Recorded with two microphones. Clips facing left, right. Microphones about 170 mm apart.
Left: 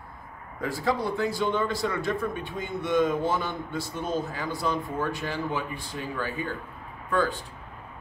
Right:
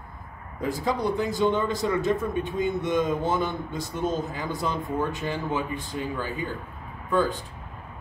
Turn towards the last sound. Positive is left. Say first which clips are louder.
# right 2 dB
turn(degrees=-15)  # may be behind; listen again after turning